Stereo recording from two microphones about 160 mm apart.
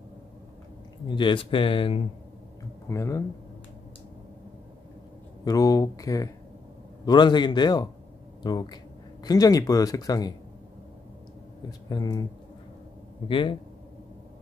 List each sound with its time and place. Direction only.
1.0 s speech: 30° left (ahead or behind)
2.9 s speech: 20° left (ahead or behind)
5.4 s speech: 25° left (ahead or behind)
11.9 s speech: 25° left (ahead or behind)
13.3 s speech: 30° left (ahead or behind)